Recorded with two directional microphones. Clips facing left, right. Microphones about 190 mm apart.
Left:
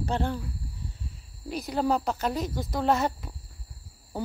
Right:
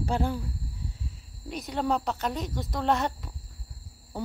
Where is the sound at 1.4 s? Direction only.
Centre (ahead or behind).